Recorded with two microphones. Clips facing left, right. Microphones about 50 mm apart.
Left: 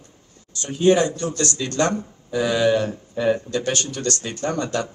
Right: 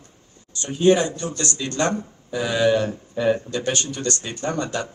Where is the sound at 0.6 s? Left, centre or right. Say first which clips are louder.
Even; right.